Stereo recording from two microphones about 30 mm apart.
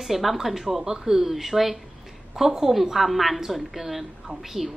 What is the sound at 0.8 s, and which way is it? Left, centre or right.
A woman's voice, centre.